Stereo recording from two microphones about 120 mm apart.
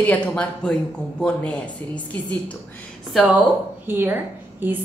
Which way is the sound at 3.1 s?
Centre (ahead or behind).